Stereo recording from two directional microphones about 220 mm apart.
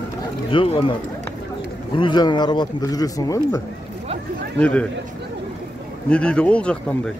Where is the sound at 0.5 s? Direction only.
25° left (ahead or behind).